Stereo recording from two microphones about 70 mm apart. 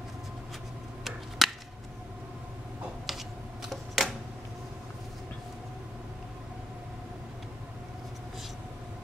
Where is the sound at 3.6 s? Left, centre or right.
Centre.